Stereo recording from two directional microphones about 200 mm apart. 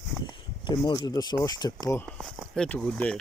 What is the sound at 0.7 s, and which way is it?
Speech, 20° left (ahead or behind).